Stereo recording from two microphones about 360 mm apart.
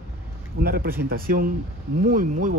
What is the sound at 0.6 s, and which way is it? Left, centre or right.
Speech, right.